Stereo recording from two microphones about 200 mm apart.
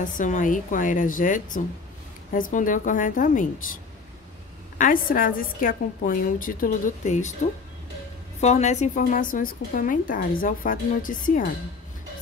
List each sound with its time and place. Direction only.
0.0 s a woman's voice: 40° left (ahead or behind)
8.4 s a woman's voice: 35° left (ahead or behind)